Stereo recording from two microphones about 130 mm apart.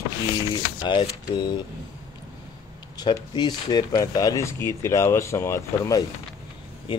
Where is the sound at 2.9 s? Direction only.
35° left (ahead or behind).